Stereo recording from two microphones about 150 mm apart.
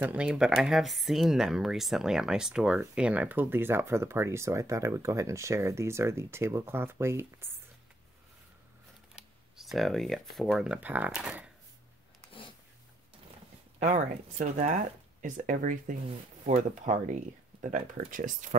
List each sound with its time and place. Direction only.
0.0 s speech: 10° right (ahead or behind)
9.1 s speech: centre (ahead or behind)
12.3 s a sound: 35° left (ahead or behind)
13.7 s speech: 55° right (ahead or behind)